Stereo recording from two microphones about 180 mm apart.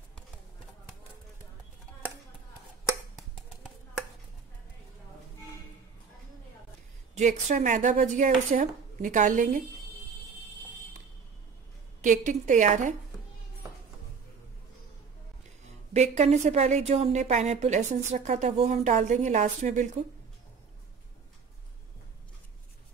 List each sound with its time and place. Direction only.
7.2 s a woman's voice: 45° right (ahead or behind)
12.0 s a woman's voice: 45° right (ahead or behind)
15.9 s a woman's voice: 40° right (ahead or behind)